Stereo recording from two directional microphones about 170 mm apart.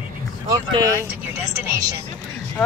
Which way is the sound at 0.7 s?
20° right (ahead or behind).